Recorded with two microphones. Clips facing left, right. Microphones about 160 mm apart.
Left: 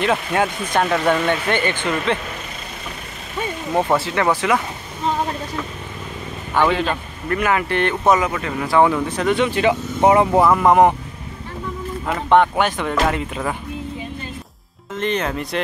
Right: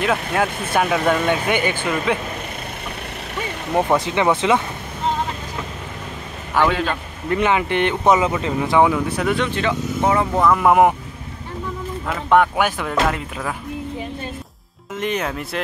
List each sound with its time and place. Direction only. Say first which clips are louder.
0.0 s speech: left 1 dB; centre (ahead or behind)
4.0 s speech: right 1 dB; 20° right (ahead or behind)
6.6 s speech: left 1 dB; 5° left (ahead or behind)
7.2 s speech: right 1 dB; 20° right (ahead or behind)
8.8 s speech: left 1 dB; 10° right (ahead or behind)
9.9 s speech: left 5 dB; 20° left (ahead or behind)
10.6 s speech: right 2 dB; 5° right (ahead or behind)
12.1 s speech: left 1 dB; 5° right (ahead or behind)
15.0 s speech: left 2 dB; 10° right (ahead or behind)